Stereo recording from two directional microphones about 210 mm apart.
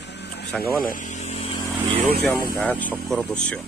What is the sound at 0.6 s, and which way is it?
Speech, 40° left (ahead or behind).